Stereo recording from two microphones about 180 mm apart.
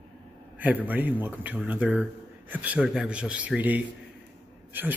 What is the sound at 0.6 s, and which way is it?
Speech, 10° right (ahead or behind).